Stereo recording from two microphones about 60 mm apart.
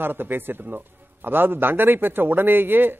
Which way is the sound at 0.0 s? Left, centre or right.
Right.